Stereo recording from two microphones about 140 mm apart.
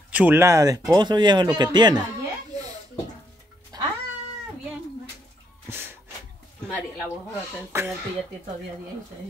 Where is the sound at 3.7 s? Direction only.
30° right (ahead or behind).